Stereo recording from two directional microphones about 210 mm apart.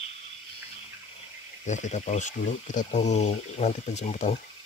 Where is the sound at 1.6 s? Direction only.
35° left (ahead or behind).